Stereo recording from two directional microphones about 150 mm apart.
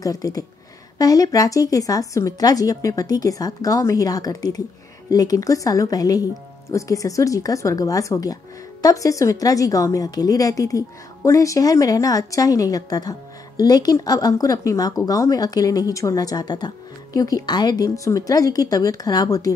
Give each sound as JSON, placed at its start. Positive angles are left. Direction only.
{"t": 0.0, "sound": "speech", "side_deg": 25}